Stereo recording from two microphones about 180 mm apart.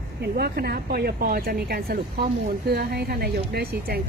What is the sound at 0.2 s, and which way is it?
Speech, 60° right (ahead or behind).